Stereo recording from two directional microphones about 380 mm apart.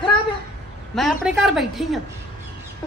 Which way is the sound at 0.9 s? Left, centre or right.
Centre.